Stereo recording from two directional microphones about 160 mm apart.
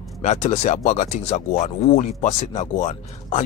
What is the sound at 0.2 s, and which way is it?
Speech, 50° left (ahead or behind).